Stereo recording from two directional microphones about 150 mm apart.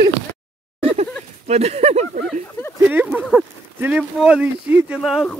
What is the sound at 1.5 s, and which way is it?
Speech, 45° right (ahead or behind).